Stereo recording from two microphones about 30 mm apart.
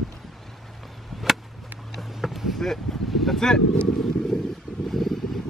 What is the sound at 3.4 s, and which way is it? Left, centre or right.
Vehicle, left.